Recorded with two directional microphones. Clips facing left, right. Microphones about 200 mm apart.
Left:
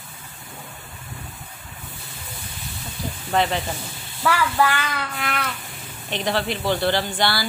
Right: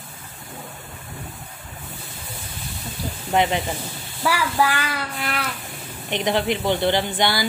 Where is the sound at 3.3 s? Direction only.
15° right (ahead or behind).